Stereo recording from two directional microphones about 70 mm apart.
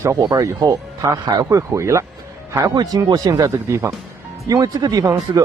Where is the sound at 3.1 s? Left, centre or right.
Right.